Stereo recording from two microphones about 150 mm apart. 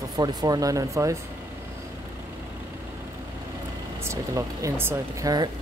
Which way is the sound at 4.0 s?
20° right (ahead or behind).